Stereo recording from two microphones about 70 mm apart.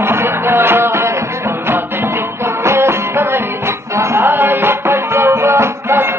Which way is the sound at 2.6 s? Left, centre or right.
Right.